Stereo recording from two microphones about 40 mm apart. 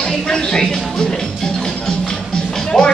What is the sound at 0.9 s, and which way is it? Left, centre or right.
Music, left.